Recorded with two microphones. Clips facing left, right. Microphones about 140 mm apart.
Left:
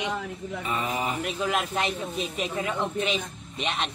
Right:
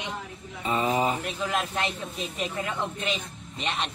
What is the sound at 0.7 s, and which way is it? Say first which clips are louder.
Speech: right 5 dB; 25° right (ahead or behind).